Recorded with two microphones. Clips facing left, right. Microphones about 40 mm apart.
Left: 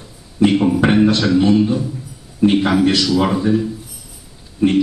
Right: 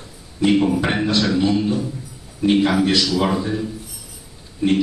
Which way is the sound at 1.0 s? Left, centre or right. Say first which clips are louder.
Left 4 dB; left.